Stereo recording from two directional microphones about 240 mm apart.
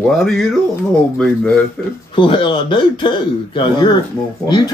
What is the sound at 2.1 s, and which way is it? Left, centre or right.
A man's voice, left.